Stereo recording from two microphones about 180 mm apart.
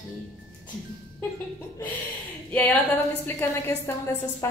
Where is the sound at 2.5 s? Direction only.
10° left (ahead or behind).